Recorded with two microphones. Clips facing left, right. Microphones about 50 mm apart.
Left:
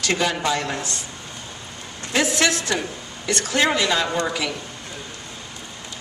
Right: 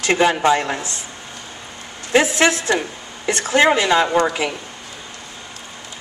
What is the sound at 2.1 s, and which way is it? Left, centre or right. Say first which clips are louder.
Speech: right 5 dB; right.